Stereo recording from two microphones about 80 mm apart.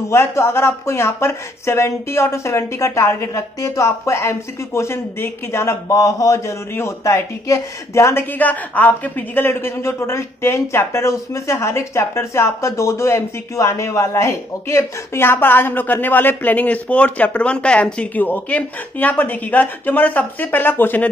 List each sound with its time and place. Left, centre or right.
0.1 s speech: left
6.7 s speech: left